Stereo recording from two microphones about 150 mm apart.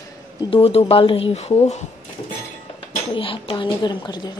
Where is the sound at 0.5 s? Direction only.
40° left (ahead or behind).